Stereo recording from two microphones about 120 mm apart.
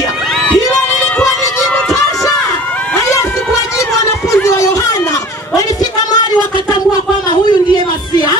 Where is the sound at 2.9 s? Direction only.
25° left (ahead or behind).